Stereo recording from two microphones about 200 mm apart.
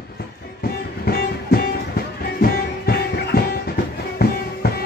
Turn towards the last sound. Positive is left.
turn(degrees=55)  # may be behind; listen again after turning